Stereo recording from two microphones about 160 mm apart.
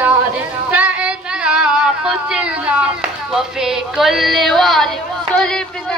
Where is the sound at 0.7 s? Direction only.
10° right (ahead or behind).